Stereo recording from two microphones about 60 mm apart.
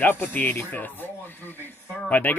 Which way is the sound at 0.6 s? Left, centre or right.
Left.